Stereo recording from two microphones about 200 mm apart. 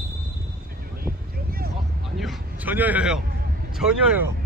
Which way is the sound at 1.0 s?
50° right (ahead or behind).